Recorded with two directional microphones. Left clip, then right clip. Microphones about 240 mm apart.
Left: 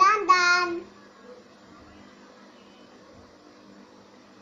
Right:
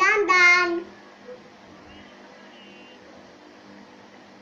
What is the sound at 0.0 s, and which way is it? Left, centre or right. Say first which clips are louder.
Child singing: right 2 dB; centre.